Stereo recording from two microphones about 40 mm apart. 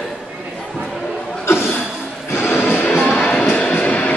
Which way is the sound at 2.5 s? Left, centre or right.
Left.